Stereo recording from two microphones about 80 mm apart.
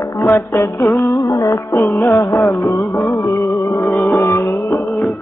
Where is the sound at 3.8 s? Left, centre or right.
Left.